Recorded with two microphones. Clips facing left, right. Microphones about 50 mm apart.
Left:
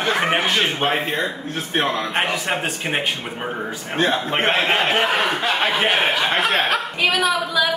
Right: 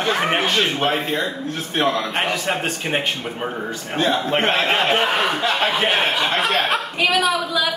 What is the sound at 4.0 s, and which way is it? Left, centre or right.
A man's voice, left.